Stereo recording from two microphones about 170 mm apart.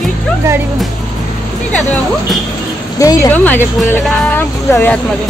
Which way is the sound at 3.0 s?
20° left (ahead or behind).